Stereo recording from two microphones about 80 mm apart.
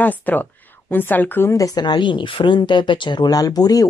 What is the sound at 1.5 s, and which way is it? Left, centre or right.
Speech, left.